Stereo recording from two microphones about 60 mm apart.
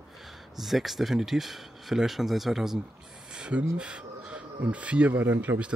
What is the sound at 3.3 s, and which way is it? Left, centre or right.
Speech, centre.